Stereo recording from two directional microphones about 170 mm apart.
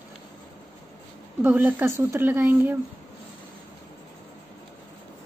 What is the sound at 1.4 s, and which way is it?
A woman's voice, 10° right (ahead or behind).